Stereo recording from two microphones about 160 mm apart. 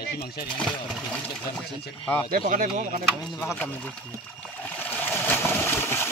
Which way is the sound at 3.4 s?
10° left (ahead or behind).